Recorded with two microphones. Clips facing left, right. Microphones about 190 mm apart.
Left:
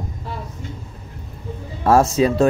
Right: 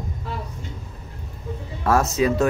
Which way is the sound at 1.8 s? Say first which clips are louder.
Left 5 dB; 30° left (ahead or behind).